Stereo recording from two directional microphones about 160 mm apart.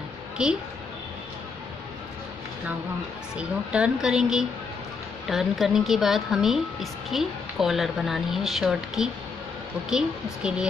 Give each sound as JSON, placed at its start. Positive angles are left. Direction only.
{"t": 0.4, "sound": "a woman's voice", "side_deg": -5}
{"t": 3.3, "sound": "a woman's voice", "side_deg": -5}